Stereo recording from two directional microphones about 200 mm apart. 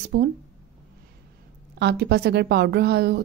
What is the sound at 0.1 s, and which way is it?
Speech, 55° right (ahead or behind).